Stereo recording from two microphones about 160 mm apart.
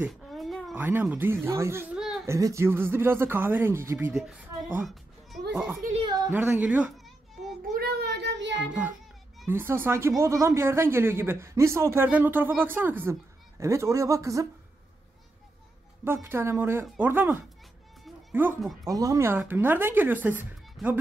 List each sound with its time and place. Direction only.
0.0 s a sound: centre (ahead or behind)
0.7 s speech: 10° right (ahead or behind)
2.0 s a sound: centre (ahead or behind)
2.2 s speech: 20° right (ahead or behind)
4.1 s speech: centre (ahead or behind)
5.5 s a child's voice: 10° right (ahead or behind)
7.7 s child singing: 75° right (ahead or behind); by 8.5 s 90° right
8.5 s speech: 10° right (ahead or behind)
16.0 s speech: 15° right (ahead or behind)